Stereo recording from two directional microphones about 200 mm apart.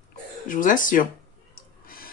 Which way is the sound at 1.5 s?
45° left (ahead or behind).